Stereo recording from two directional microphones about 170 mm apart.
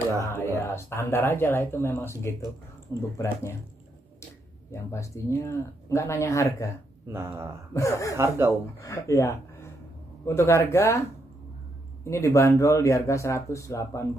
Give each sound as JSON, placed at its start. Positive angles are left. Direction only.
{"t": 0.2, "sound": "speech", "side_deg": 15}
{"t": 4.6, "sound": "speech", "side_deg": 15}
{"t": 7.1, "sound": "speech", "side_deg": -15}
{"t": 7.7, "sound": "speech", "side_deg": 20}